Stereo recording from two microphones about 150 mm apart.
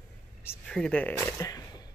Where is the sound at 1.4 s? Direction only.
25° left (ahead or behind).